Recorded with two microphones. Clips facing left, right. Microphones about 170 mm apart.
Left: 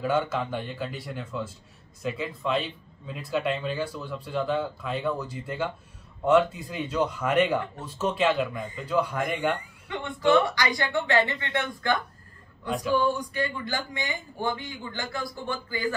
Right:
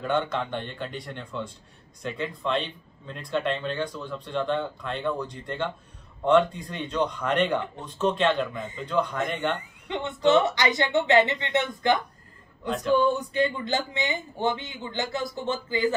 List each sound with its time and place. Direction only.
0.0 s a man's voice: 5° left (ahead or behind)
9.8 s speech: 25° right (ahead or behind)
12.6 s speech: centre (ahead or behind)
12.9 s speech: 20° right (ahead or behind)